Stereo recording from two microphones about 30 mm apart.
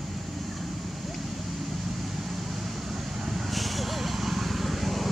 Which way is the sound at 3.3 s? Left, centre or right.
Centre.